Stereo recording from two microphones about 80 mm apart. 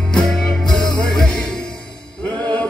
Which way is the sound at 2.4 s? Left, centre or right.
Centre.